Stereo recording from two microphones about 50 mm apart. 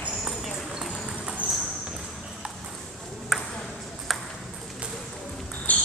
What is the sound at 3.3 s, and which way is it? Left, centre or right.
Ping, centre.